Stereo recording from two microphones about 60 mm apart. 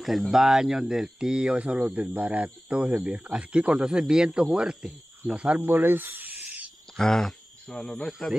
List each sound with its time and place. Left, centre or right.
0.3 s speech: centre
5.6 s speech: right
6.4 s a sound: right
7.0 s speech: centre